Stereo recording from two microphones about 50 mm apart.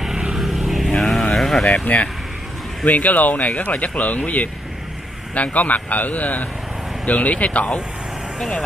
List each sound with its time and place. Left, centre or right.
0.0 s vehicle: centre
1.3 s a sound: centre
1.7 s speech: left
5.3 s speech: left